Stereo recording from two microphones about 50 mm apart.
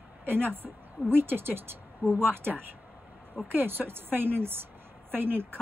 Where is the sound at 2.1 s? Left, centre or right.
Centre.